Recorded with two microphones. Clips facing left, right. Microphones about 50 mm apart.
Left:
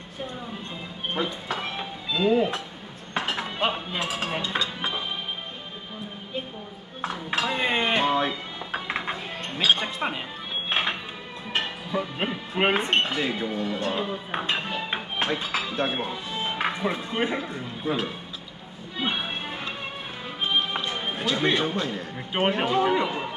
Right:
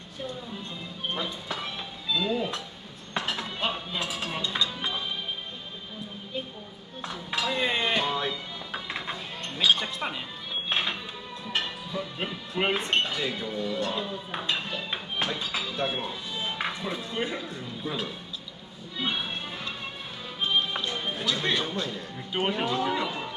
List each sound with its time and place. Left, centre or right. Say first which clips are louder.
1.1 s speech: left 6 dB; left
7.0 s dishes: left 4 dB; left
11.5 s speech: left 4 dB; left
18.9 s music: left 2 dB; left
20.3 s speech: left 1 dB; left